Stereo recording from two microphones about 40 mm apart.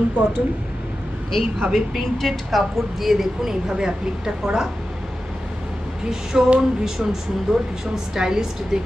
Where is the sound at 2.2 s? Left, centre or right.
Centre.